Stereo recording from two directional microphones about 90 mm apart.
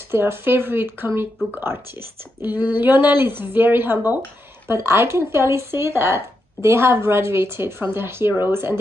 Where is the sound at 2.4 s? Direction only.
20° right (ahead or behind).